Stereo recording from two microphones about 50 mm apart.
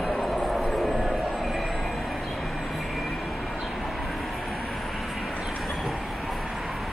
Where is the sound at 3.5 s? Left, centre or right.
Centre.